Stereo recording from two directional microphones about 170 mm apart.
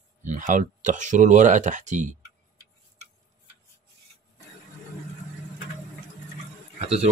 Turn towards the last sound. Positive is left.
turn(degrees=-40)  # may be behind; listen again after turning